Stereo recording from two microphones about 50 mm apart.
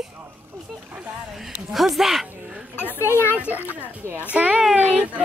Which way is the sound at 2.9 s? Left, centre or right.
Left.